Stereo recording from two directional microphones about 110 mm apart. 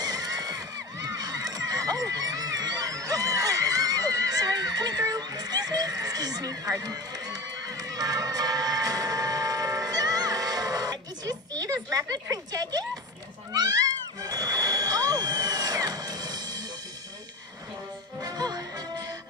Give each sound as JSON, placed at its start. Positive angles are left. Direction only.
{"t": 0.0, "sound": "neigh", "side_deg": -35}
{"t": 13.5, "sound": "cat", "side_deg": -35}
{"t": 18.2, "sound": "music", "side_deg": -40}